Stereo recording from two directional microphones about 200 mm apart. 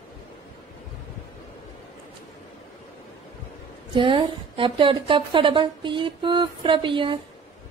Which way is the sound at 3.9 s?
25° right (ahead or behind).